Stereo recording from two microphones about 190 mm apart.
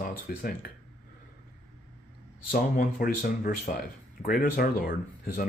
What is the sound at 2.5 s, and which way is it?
Speech, 50° left (ahead or behind).